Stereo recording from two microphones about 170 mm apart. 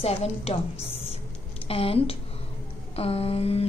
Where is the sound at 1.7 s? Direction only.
35° left (ahead or behind).